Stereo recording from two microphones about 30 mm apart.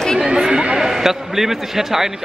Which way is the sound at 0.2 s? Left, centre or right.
Right.